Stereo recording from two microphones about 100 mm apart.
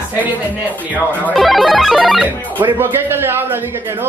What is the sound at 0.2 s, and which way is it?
Speech, 15° right (ahead or behind).